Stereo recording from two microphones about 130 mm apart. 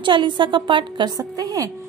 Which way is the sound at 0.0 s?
40° right (ahead or behind).